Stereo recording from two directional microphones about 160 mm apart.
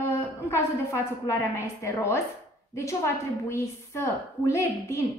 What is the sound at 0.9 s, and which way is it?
A woman's voice, 15° left (ahead or behind).